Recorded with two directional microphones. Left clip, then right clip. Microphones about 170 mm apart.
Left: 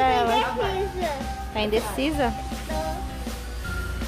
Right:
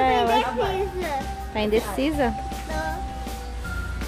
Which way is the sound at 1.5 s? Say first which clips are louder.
Right 1 dB; 15° right (ahead or behind).